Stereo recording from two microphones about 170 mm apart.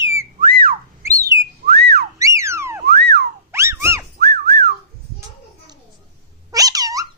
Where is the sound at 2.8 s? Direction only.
75° right (ahead or behind).